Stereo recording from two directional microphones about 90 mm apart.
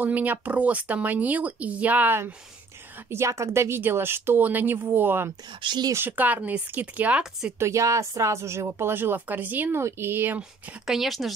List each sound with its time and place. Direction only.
0.0 s speech: 20° right (ahead or behind)
3.1 s speech: 30° right (ahead or behind)
5.6 s speech: 60° right (ahead or behind)
6.0 s speech: 20° right (ahead or behind)
7.5 s speech: 35° right (ahead or behind)
10.9 s speech: centre (ahead or behind)